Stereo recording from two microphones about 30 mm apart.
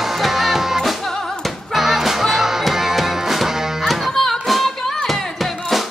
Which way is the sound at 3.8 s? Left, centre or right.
Centre.